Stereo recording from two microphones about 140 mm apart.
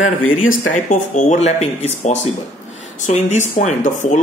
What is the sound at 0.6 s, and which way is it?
Speech, 65° left (ahead or behind).